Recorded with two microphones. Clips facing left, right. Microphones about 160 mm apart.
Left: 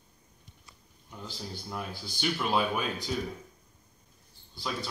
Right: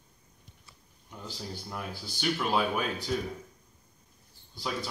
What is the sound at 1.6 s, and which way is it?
Speech, centre (ahead or behind).